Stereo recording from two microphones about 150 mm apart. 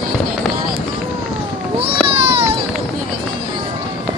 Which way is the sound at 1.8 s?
40° right (ahead or behind).